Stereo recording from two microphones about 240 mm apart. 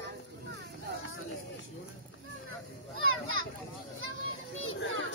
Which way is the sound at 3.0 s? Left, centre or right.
Right.